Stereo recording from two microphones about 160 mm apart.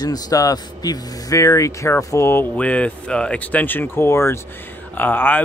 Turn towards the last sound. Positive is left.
turn(degrees=10)  # may be behind; listen again after turning